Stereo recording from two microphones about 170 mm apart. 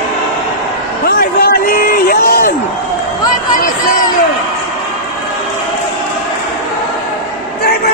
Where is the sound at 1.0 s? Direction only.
65° left (ahead or behind).